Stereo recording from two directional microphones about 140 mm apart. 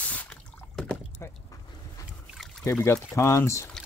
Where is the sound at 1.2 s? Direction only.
25° left (ahead or behind).